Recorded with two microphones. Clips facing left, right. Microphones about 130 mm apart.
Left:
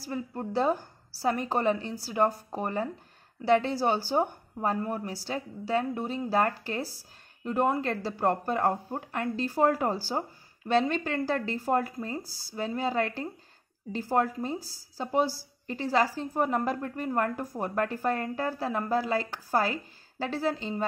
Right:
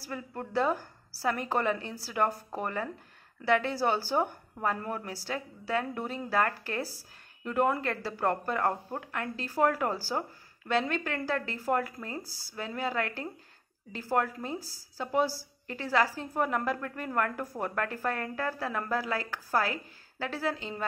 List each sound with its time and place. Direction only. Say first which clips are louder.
0.1 s a woman's voice: left 2 dB; 25° left (ahead or behind)